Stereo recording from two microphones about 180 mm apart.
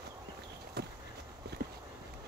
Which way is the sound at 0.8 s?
65° right (ahead or behind).